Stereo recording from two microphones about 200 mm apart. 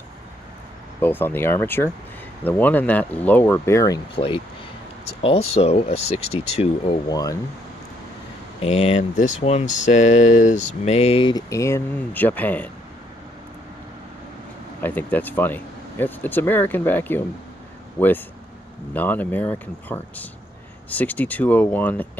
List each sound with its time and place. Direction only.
1.0 s speech: 10° left (ahead or behind); by 7.0 s 30° left (ahead or behind)
7.1 s speech: 20° left (ahead or behind)
8.5 s speech: 30° left (ahead or behind); by 12.6 s 10° left (ahead or behind)
14.8 s speech: 10° left (ahead or behind)